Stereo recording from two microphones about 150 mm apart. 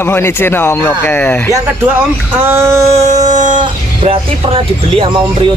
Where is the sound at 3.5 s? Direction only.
35° right (ahead or behind).